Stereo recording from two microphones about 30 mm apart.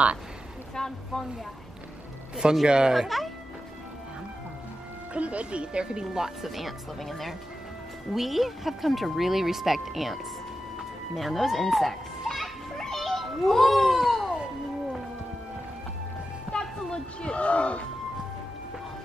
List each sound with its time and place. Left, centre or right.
0.7 s a sound: left
2.6 s speech: right
3.1 s speech: centre
5.1 s speech: right
6.4 s speech: centre
7.0 s speech: centre
11.1 s children playing: centre
13.0 s a sound: centre
16.5 s music: left